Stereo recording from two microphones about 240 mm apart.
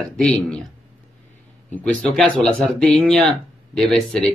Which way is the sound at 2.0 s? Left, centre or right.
Centre.